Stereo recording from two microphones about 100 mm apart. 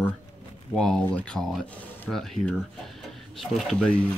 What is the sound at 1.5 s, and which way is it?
Speech, centre (ahead or behind).